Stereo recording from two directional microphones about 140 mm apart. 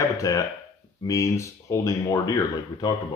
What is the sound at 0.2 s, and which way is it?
Speech, 25° left (ahead or behind).